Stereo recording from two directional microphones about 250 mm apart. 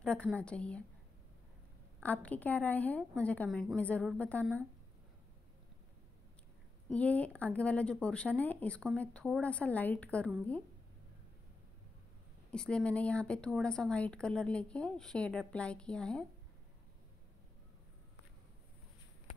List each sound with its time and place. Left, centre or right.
0.0 s speech: centre
2.0 s speech: centre
6.9 s speech: centre
12.4 s speech: centre